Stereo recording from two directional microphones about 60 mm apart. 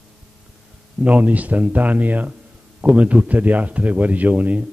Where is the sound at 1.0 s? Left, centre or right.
Right.